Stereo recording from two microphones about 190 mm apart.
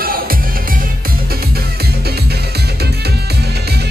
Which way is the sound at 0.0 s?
50° right (ahead or behind).